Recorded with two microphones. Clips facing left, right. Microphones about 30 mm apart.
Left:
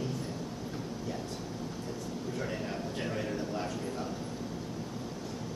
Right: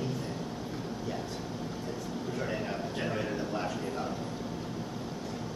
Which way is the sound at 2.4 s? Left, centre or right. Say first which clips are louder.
Right 3 dB; centre.